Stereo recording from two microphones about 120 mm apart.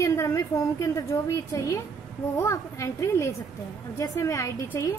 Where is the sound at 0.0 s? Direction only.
25° left (ahead or behind).